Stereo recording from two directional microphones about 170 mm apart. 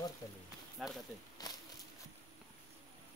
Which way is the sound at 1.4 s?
20° left (ahead or behind).